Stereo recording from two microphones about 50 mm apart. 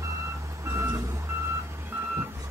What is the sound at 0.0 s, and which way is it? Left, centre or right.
Reversing beeps, right.